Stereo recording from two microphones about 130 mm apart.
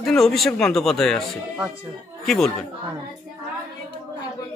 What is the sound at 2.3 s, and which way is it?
Speech, 5° left (ahead or behind).